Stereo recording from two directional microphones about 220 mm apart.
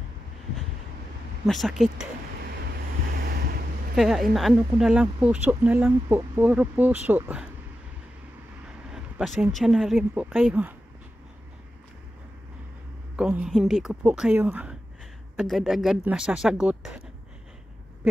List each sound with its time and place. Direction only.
1.4 s speech: centre (ahead or behind)
3.9 s speech: centre (ahead or behind)
8.9 s speech: centre (ahead or behind)
13.1 s speech: 5° right (ahead or behind)